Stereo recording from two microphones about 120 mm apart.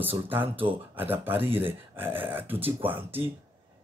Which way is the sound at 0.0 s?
15° right (ahead or behind).